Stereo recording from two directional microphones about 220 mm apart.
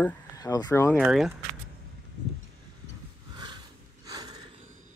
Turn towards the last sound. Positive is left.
turn(degrees=-15)  # may be behind; listen again after turning